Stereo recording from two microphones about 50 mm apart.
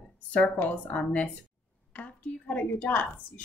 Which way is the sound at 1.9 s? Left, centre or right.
Left.